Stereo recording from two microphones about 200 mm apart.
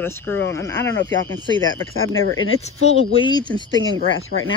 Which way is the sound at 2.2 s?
85° left.